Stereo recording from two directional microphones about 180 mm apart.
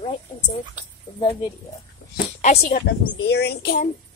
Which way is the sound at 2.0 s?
60° left (ahead or behind).